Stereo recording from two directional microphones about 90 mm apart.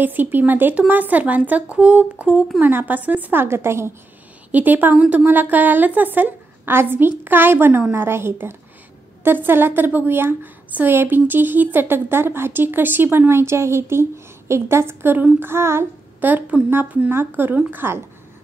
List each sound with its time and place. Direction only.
0.0 s a woman's voice: 20° right (ahead or behind)
4.5 s a woman's voice: 20° right (ahead or behind)